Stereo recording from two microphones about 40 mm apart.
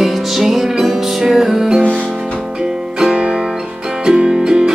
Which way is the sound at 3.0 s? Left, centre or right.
Centre.